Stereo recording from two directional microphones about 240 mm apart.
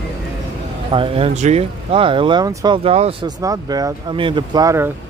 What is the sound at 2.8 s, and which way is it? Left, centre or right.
Speech, right.